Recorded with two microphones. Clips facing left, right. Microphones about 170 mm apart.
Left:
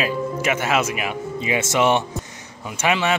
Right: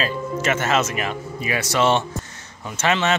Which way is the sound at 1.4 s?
20° left (ahead or behind).